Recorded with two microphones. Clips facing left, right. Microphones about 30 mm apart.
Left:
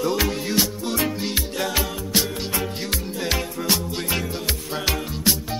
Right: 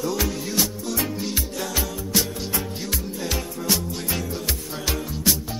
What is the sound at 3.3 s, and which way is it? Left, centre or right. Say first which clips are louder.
Music: left 2 dB; left.